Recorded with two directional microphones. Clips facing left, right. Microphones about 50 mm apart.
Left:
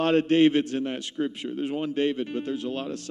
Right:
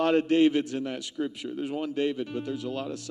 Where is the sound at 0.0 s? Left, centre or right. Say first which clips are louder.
Left 2 dB; left.